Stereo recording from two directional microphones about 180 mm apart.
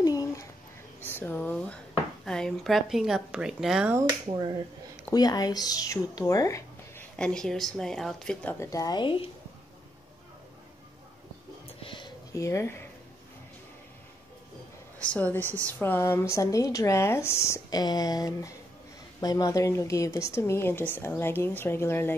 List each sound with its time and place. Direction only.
0.0 s a sound: 20° left (ahead or behind)
2.2 s a woman's voice: 5° left (ahead or behind)
3.9 s speech: 20° right (ahead or behind)
5.1 s speech: 20° left (ahead or behind)
7.2 s a woman's voice: 5° left (ahead or behind)
8.5 s speech: 20° left (ahead or behind)
11.8 s a sound: 25° left (ahead or behind)
15.0 s speech: 5° left (ahead or behind)